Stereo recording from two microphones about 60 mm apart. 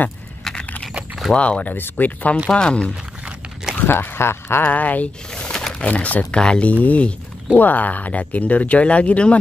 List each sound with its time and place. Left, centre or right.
0.4 s a sound: centre
1.3 s speech: centre
2.5 s speech: centre
3.7 s speech: left
4.6 s speech: left
5.3 s a sound: centre
5.8 s speech: left